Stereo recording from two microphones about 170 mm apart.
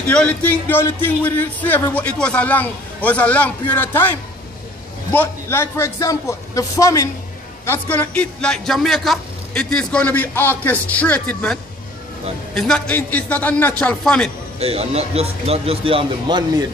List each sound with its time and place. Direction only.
0.0 s speech: 5° left (ahead or behind)
5.1 s speech: 15° left (ahead or behind)
14.6 s speech: 35° right (ahead or behind)